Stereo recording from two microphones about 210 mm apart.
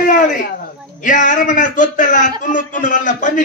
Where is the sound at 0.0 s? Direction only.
35° left (ahead or behind).